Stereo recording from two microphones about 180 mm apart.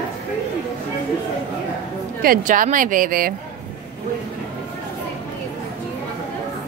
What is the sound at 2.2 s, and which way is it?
Speech, 50° right (ahead or behind).